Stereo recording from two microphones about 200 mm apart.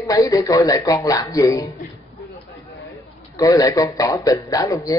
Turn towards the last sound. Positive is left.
turn(degrees=15)  # may be behind; listen again after turning